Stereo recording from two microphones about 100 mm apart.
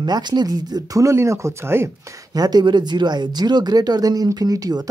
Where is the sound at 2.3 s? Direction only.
40° right (ahead or behind).